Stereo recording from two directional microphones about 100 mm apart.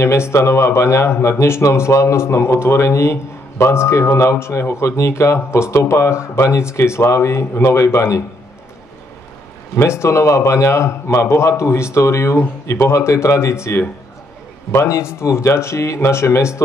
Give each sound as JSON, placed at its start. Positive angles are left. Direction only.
{"t": 0.0, "sound": "speech", "side_deg": 25}
{"t": 9.8, "sound": "speech", "side_deg": 25}